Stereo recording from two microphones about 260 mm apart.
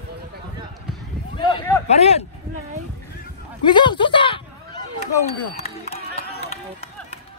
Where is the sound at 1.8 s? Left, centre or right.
Left.